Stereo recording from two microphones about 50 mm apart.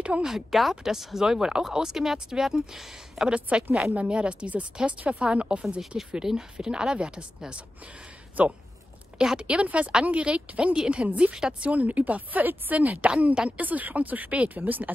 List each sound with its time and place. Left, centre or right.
0.2 s speech: centre
3.3 s speech: right
5.8 s speech: centre
8.4 s a woman's voice: right
9.2 s speech: centre
11.7 s a woman's voice: right
13.2 s speech: centre
13.5 s a woman's voice: right